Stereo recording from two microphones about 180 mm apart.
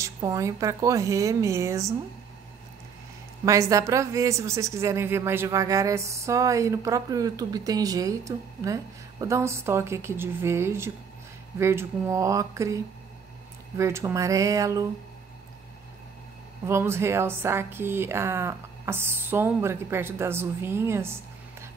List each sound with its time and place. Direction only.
0.0 s a woman's voice: 15° right (ahead or behind)
3.4 s a woman's voice: 15° right (ahead or behind)
16.6 s a woman's voice: 15° right (ahead or behind)